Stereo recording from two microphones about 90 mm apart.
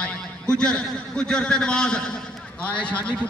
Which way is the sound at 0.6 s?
10° left (ahead or behind).